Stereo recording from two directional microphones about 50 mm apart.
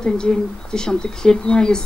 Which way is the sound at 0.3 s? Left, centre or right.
Centre.